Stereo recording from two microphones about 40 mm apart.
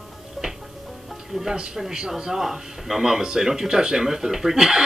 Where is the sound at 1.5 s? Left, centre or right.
Right.